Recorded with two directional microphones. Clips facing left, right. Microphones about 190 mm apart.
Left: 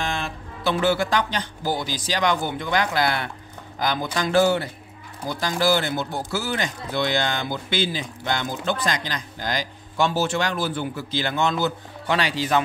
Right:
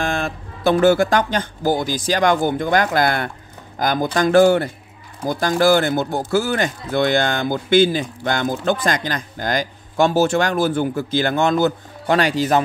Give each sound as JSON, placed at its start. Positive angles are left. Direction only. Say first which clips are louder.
{"t": 0.0, "sound": "speech", "louder": "right 6 dB", "side_deg": -45}